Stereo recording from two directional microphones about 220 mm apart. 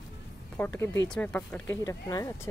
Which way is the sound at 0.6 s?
10° left (ahead or behind).